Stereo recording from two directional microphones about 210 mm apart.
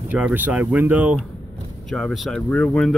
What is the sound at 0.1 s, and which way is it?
Speech, 10° right (ahead or behind).